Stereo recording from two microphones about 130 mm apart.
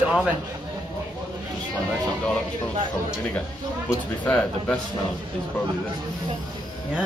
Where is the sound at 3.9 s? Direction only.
15° left (ahead or behind).